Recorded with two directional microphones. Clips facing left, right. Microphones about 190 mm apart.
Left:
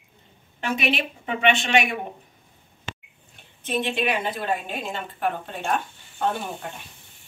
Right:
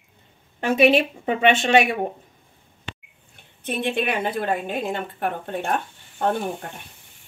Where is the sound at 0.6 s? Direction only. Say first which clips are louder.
Right 9 dB; 40° right (ahead or behind).